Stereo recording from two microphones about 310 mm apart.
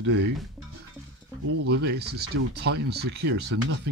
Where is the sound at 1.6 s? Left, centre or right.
Right.